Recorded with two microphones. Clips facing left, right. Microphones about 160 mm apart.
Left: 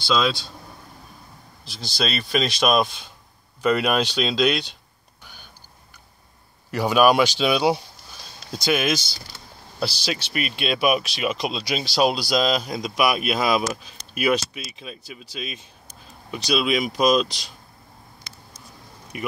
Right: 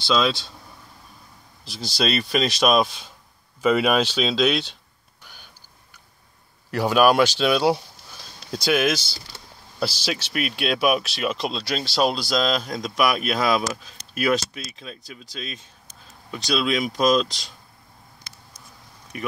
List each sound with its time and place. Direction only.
0.0 s speech: centre (ahead or behind)
1.7 s speech: 5° right (ahead or behind)
6.7 s speech: centre (ahead or behind)